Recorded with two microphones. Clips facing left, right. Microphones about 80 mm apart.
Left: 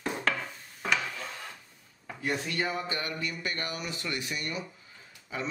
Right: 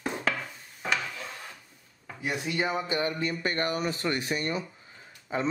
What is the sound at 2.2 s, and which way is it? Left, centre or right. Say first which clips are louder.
A man's voice: right 2 dB; centre.